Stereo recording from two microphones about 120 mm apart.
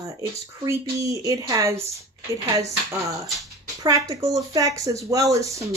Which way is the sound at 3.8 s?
30° right (ahead or behind).